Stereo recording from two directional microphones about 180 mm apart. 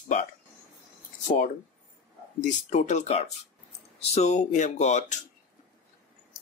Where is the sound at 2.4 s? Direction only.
40° left (ahead or behind).